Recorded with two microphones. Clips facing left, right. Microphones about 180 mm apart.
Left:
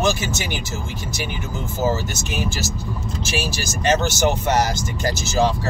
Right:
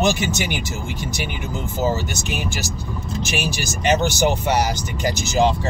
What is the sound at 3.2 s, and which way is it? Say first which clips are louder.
Speech: right 2 dB; 15° right (ahead or behind).